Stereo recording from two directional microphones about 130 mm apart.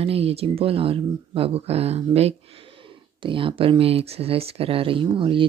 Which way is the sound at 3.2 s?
40° right (ahead or behind).